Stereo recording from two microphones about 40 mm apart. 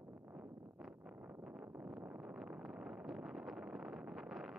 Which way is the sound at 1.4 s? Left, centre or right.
Right.